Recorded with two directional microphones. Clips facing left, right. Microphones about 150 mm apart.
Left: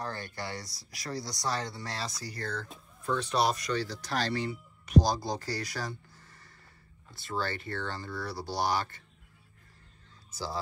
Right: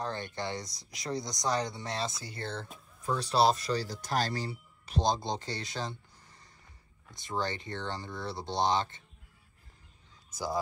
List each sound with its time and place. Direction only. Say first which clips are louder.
0.0 s speech: right 2 dB; 20° right (ahead or behind)